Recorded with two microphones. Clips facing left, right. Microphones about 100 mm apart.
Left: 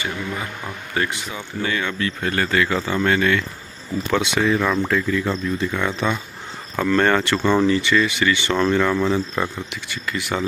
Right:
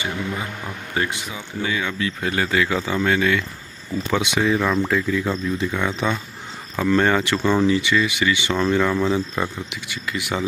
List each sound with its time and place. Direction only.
1.0 s speech: 20° right (ahead or behind)
1.3 s speech: 5° right (ahead or behind)